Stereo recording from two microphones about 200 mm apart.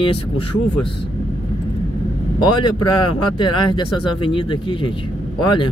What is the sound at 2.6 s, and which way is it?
Speech, 20° left (ahead or behind).